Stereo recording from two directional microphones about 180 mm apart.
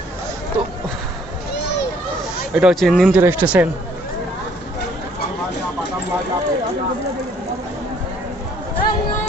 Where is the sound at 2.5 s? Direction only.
Centre (ahead or behind).